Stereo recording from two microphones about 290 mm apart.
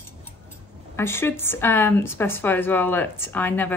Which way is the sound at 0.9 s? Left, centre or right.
Centre.